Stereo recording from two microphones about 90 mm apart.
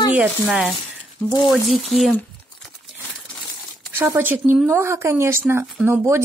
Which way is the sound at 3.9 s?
35° right (ahead or behind).